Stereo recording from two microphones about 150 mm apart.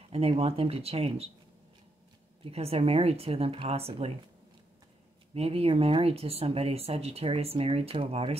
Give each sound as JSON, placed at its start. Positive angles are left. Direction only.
{"t": 0.1, "sound": "speech", "side_deg": -40}
{"t": 2.5, "sound": "speech", "side_deg": -40}
{"t": 5.3, "sound": "speech", "side_deg": -40}